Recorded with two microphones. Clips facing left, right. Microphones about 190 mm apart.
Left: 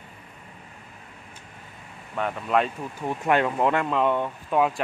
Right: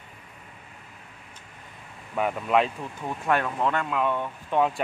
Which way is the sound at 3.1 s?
20° left (ahead or behind).